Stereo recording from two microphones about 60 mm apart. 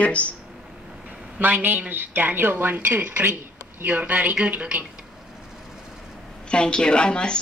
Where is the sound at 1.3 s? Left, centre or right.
Right.